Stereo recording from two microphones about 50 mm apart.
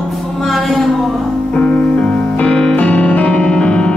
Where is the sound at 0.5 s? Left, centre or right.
Centre.